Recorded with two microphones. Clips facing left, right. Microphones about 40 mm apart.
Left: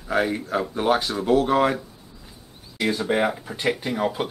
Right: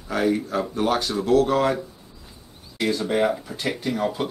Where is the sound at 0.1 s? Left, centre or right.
Centre.